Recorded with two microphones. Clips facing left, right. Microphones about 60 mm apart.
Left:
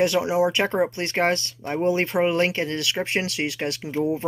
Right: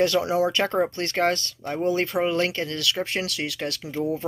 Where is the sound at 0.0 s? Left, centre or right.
Left.